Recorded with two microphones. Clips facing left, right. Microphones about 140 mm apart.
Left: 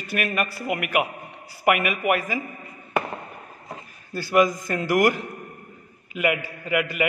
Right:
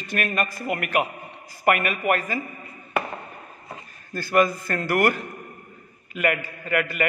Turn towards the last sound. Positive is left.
turn(degrees=10)  # may be behind; listen again after turning